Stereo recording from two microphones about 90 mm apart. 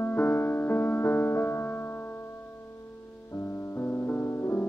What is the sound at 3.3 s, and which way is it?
Music, 25° left (ahead or behind).